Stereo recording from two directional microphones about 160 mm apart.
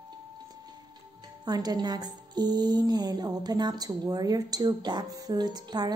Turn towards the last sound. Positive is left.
turn(degrees=-25)  # may be behind; listen again after turning